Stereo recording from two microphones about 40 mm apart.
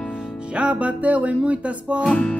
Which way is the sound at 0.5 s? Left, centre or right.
Right.